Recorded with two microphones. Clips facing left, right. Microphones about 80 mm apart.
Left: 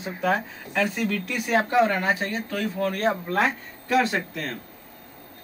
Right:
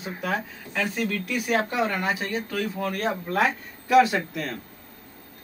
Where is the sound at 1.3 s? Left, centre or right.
Left.